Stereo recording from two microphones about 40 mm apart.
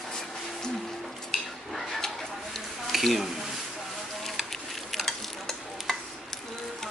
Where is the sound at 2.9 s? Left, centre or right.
Centre.